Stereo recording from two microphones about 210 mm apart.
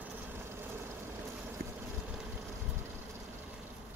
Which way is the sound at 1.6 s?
50° right (ahead or behind).